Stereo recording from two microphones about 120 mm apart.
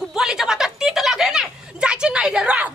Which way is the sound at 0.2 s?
5° right (ahead or behind).